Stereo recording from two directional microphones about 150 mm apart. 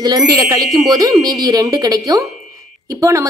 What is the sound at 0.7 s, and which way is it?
A woman's voice, 25° right (ahead or behind).